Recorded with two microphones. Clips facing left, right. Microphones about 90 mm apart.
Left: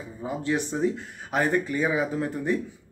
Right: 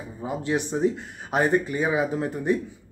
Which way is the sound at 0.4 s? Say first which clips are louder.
Right 2 dB; 20° right (ahead or behind).